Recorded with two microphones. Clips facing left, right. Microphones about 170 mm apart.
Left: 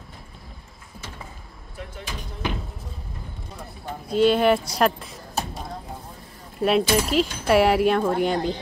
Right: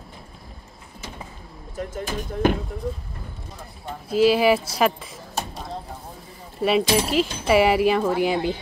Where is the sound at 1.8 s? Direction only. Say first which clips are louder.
Right 8 dB; 45° right (ahead or behind).